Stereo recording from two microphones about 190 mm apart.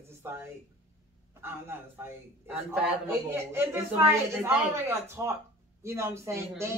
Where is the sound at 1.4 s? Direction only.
10° right (ahead or behind).